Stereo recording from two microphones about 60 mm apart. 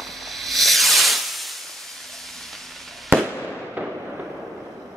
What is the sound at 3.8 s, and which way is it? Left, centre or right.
Fireworks, right.